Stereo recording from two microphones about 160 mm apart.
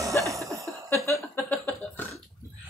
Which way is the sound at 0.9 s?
15° left (ahead or behind).